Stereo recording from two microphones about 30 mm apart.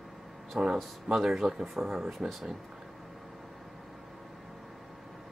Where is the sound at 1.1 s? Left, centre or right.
Centre.